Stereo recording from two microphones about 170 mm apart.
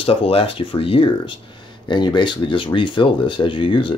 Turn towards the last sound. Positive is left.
turn(degrees=30)  # may be behind; listen again after turning